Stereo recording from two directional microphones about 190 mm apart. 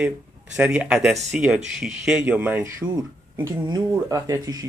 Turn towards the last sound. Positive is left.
turn(degrees=-20)  # may be behind; listen again after turning